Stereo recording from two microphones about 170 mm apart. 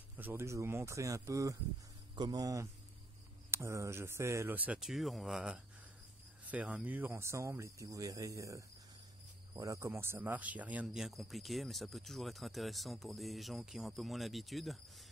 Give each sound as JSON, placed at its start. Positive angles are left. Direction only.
{"t": 0.2, "sound": "speech", "side_deg": -15}